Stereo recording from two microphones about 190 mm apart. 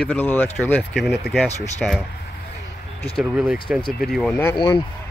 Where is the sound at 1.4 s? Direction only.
35° left (ahead or behind).